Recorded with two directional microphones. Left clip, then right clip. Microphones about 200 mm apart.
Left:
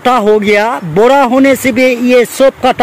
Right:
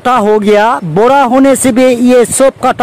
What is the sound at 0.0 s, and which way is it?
Speech, 20° right (ahead or behind).